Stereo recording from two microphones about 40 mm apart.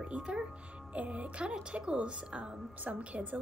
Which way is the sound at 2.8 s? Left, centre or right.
Right.